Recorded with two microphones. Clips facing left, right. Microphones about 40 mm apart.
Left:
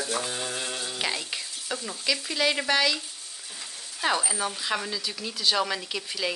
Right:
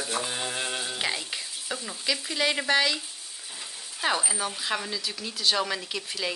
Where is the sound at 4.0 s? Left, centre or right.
Centre.